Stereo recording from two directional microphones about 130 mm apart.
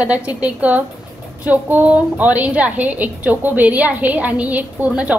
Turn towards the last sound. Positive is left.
turn(degrees=-10)  # may be behind; listen again after turning